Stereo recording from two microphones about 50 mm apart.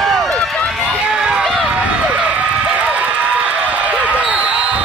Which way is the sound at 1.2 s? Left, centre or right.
Centre.